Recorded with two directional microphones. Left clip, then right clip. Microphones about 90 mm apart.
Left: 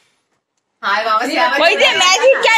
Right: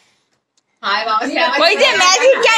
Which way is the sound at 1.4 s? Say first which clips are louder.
Even; 35° right (ahead or behind).